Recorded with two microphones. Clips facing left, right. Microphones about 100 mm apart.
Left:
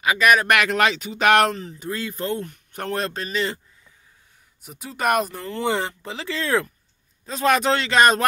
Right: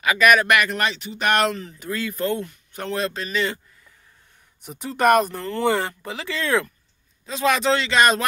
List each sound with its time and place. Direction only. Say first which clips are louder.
0.0 s speech: right 1 dB; 25° left (ahead or behind)
0.5 s speech: left 2 dB; 85° left
1.5 s speech: even; 30° left (ahead or behind)
2.4 s speech: left 1 dB; 50° left (ahead or behind)
4.6 s speech: right 6 dB; 5° left (ahead or behind)
5.4 s speech: right 2 dB; 15° left (ahead or behind); by 6.7 s 35° left (ahead or behind)
7.2 s speech: left 1 dB; 45° left (ahead or behind)